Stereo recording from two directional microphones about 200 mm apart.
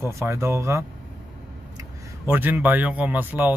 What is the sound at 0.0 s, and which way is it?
Speech, 15° right (ahead or behind).